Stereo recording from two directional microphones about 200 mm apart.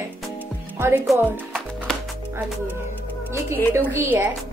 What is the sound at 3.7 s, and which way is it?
Speech, 10° right (ahead or behind).